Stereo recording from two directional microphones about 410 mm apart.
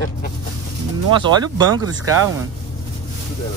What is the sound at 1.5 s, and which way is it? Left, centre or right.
Speech, centre.